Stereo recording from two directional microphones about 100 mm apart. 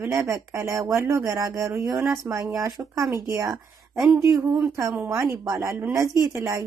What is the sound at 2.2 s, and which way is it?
Speech, 15° right (ahead or behind).